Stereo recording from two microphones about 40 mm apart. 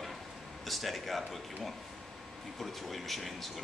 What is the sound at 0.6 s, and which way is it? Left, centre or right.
Speech, centre.